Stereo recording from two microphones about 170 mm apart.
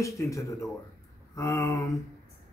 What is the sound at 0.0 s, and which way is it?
Speech, 20° left (ahead or behind).